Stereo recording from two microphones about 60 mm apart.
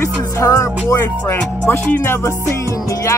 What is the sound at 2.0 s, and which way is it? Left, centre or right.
Speech, left.